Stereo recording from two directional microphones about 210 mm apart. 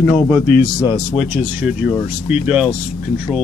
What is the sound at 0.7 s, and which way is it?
Speech, 20° left (ahead or behind).